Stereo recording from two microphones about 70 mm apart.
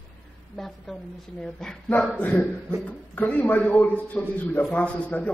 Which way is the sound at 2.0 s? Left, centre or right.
Left.